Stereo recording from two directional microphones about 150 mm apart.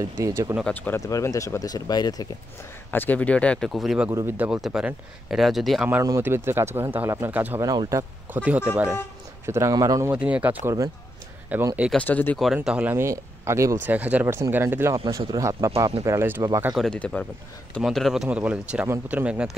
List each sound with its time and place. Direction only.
0.2 s speech: 20° right (ahead or behind)
0.6 s speech: 10° left (ahead or behind)
1.0 s speech: 20° left (ahead or behind)
2.9 s speech: 10° left (ahead or behind)
4.1 s speech: 15° right (ahead or behind); by 5.9 s centre (ahead or behind)
6.0 s speech: 15° right (ahead or behind)
7.6 s speech: 25° right (ahead or behind)
8.3 s speech: 10° right (ahead or behind)
9.5 s speech: 20° right (ahead or behind)
10.1 s speech: 10° right (ahead or behind)
11.9 s speech: 10° left (ahead or behind)
12.5 s speech: 10° right (ahead or behind)
16.7 s speech: 5° left (ahead or behind)